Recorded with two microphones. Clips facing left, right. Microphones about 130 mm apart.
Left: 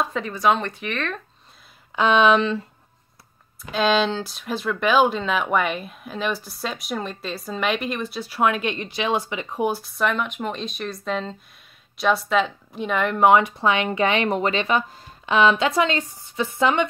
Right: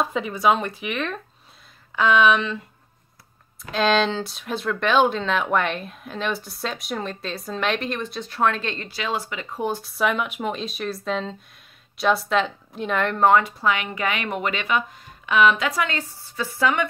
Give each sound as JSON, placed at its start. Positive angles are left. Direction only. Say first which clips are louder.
{"t": 0.0, "sound": "speech", "louder": "even", "side_deg": -5}
{"t": 2.0, "sound": "speech", "louder": "left 1 dB", "side_deg": 25}
{"t": 3.7, "sound": "speech", "louder": "even", "side_deg": 0}
{"t": 9.7, "sound": "speech", "louder": "right 2 dB", "side_deg": 0}
{"t": 13.3, "sound": "speech", "louder": "left 2 dB", "side_deg": 20}